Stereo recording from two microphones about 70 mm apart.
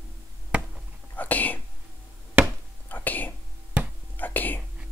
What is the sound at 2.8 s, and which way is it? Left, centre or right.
Whispering, left.